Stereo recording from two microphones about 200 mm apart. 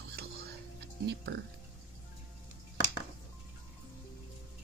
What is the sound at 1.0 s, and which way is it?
Speech, 55° right (ahead or behind).